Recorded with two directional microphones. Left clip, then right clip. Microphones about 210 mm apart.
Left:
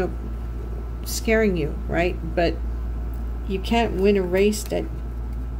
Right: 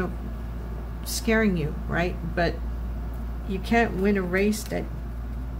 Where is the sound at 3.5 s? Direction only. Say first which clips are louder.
Left 1 dB; 35° right (ahead or behind).